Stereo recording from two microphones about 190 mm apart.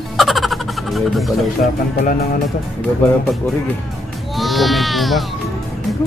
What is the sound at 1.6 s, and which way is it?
Speech, 50° left (ahead or behind).